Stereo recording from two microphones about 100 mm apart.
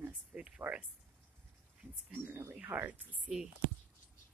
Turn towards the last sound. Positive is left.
turn(degrees=-10)  # may be behind; listen again after turning